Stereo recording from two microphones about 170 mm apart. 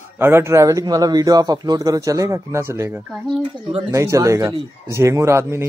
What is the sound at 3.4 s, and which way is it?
Speech, 30° right (ahead or behind).